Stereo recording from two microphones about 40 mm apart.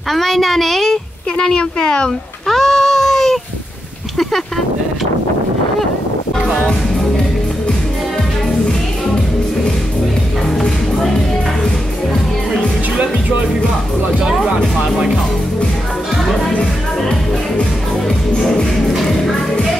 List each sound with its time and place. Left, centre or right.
0.1 s a child's voice: centre
1.8 s speech: centre
2.4 s a sound: centre